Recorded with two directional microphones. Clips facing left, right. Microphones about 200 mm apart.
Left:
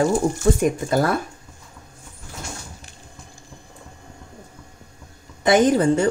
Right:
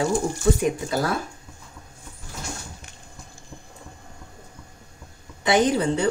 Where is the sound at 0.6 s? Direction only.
50° left (ahead or behind).